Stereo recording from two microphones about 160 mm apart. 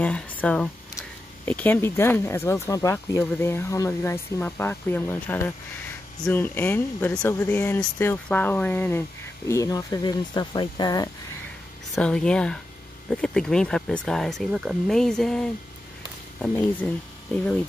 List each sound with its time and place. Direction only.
0.0 s speech: 5° left (ahead or behind); by 11.1 s 25° left (ahead or behind)
11.9 s speech: 5° left (ahead or behind)